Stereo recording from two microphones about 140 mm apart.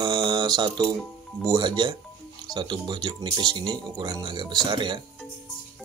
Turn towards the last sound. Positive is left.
turn(degrees=-35)  # may be behind; listen again after turning